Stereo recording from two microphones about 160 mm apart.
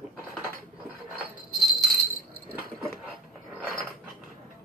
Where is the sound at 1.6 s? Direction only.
Centre (ahead or behind).